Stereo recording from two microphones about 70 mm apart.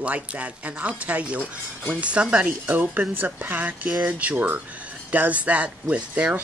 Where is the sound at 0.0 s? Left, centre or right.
Right.